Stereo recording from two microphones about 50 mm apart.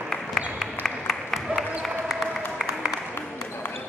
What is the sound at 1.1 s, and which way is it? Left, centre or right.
Applause, centre.